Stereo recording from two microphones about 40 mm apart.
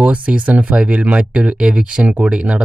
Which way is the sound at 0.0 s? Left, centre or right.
Right.